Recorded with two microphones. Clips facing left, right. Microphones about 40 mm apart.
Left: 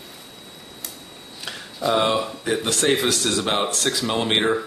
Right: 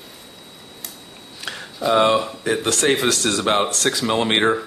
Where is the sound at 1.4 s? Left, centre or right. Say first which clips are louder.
Right 2 dB; centre.